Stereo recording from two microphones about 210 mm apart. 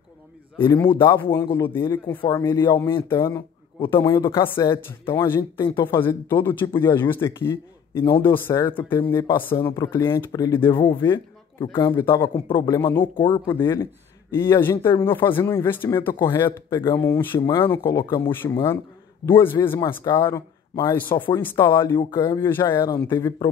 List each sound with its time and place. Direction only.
0.9 s speech: 10° left (ahead or behind)
8.0 s speech: 25° left (ahead or behind)
8.3 s speech: 10° left (ahead or behind)
11.9 s speech: 10° left (ahead or behind)